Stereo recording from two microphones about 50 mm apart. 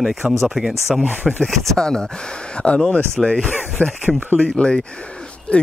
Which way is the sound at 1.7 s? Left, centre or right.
Centre.